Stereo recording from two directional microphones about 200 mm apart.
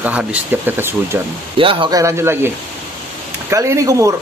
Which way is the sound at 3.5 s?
15° right (ahead or behind).